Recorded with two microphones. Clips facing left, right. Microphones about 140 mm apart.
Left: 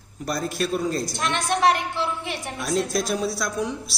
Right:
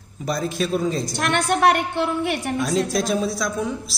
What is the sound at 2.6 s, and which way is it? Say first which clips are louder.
A man's voice: even; centre (ahead or behind).